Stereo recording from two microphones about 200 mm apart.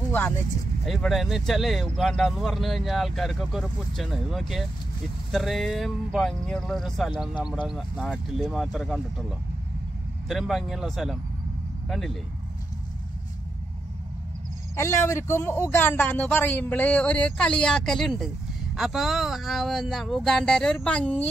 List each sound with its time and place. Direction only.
0.8 s speech: centre (ahead or behind)
7.3 s speech: 20° left (ahead or behind)
7.6 s speech: centre (ahead or behind)
10.2 s speech: centre (ahead or behind)
14.8 s a man's voice: 15° left (ahead or behind)